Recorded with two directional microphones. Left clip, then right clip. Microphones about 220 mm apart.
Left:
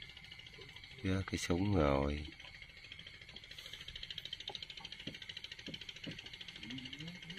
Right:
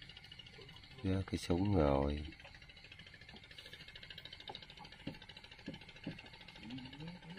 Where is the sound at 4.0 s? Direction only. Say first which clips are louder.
Left 9 dB; 30° right (ahead or behind).